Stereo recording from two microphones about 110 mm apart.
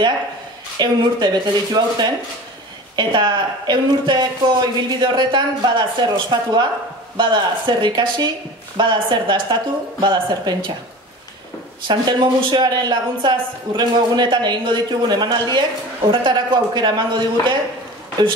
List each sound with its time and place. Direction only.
0.7 s a woman's voice: 40° right (ahead or behind)
11.9 s a woman's voice: 45° right (ahead or behind)